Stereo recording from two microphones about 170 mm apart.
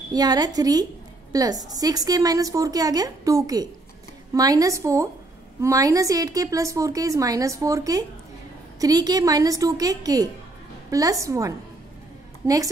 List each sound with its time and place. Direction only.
0.1 s a woman's voice: 20° right (ahead or behind)